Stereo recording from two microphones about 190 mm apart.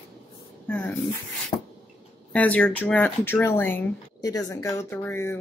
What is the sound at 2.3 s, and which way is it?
Speech, 5° left (ahead or behind).